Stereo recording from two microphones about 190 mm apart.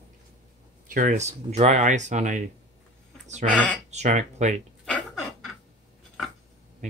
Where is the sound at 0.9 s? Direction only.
45° right (ahead or behind).